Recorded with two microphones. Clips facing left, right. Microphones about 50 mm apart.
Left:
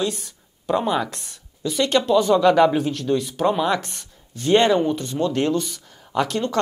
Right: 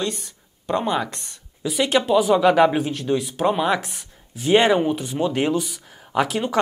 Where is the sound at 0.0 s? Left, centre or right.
Centre.